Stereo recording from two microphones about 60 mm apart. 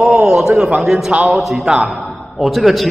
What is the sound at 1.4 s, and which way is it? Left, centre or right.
A man's voice, centre.